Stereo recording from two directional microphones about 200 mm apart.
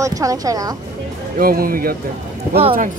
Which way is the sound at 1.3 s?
45° right (ahead or behind).